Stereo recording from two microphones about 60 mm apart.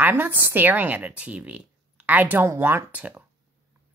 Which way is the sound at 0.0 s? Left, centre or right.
Right.